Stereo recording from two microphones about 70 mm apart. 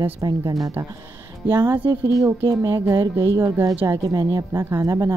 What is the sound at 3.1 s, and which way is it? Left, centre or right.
Speech, right.